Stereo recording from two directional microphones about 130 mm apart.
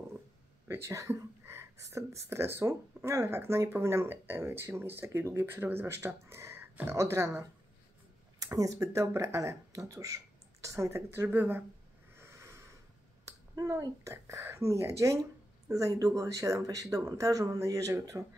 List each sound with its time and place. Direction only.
0.7 s speech: 20° right (ahead or behind)
12.2 s a sound: 20° right (ahead or behind)
13.2 s speech: 25° right (ahead or behind)